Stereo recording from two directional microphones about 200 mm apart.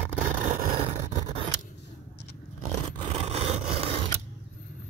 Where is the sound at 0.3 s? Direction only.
35° right (ahead or behind).